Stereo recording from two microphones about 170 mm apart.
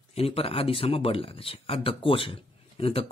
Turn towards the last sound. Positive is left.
turn(degrees=35)  # may be behind; listen again after turning